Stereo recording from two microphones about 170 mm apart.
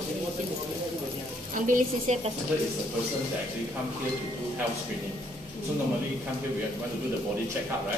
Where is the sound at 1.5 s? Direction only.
50° right (ahead or behind).